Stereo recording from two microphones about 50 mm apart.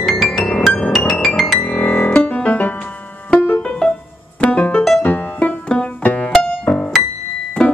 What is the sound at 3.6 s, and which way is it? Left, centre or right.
Music, centre.